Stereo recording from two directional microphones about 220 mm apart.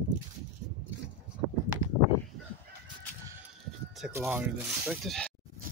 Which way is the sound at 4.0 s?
10° right (ahead or behind).